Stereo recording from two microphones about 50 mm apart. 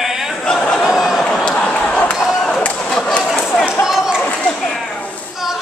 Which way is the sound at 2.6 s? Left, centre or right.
Left.